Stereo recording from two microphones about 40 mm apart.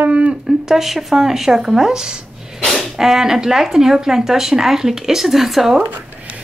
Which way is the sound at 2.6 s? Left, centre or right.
Centre.